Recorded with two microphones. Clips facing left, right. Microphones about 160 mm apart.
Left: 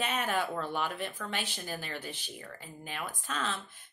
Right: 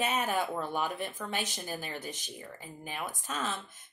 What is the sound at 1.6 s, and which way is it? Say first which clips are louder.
A woman's voice: right 1 dB; 15° right (ahead or behind).